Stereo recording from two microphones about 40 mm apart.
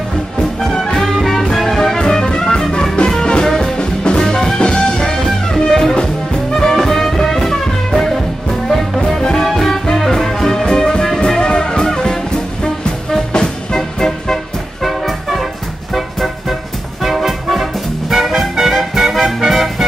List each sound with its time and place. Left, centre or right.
0.7 s music: centre
5.0 s music: centre
13.3 s music: centre